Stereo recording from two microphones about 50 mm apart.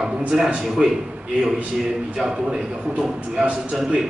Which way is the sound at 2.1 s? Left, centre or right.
Centre.